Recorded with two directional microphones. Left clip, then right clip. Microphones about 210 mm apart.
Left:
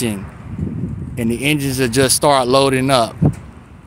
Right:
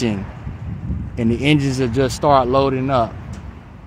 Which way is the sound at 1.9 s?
15° left (ahead or behind).